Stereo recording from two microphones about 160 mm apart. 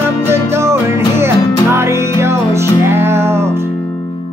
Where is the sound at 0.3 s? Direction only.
15° right (ahead or behind).